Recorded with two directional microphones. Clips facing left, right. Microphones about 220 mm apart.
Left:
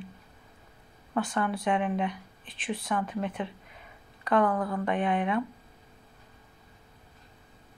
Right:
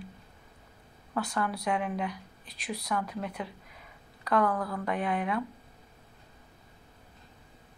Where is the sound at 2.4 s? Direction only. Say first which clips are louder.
Left 4 dB; 40° right (ahead or behind).